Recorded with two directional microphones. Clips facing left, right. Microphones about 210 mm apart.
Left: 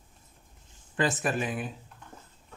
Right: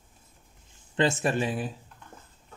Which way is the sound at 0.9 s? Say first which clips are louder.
Right 3 dB; 25° right (ahead or behind).